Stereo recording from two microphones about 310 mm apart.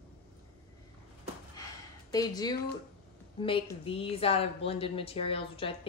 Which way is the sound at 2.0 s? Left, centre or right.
Centre.